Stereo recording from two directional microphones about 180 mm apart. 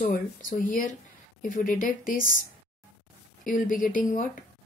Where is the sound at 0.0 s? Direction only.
50° left (ahead or behind).